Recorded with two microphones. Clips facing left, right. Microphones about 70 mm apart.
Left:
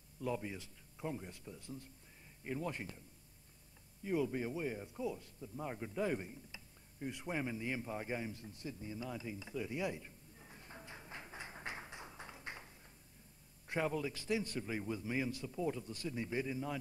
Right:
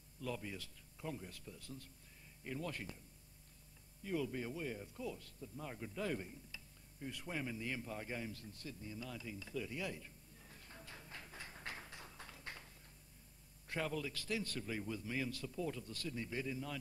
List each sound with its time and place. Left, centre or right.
0.2 s a man's voice: left
4.0 s a man's voice: left